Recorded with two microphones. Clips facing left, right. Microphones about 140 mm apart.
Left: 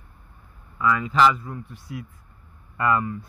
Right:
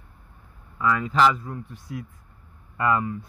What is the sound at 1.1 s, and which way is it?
Speech, 40° right (ahead or behind).